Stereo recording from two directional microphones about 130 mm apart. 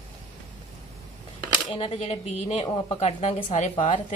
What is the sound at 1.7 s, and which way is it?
A woman's voice, 50° left (ahead or behind).